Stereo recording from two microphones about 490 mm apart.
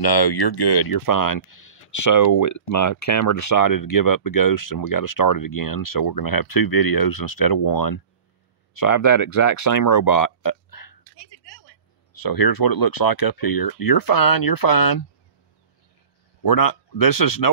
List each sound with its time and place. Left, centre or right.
0.0 s speech: left
16.4 s speech: left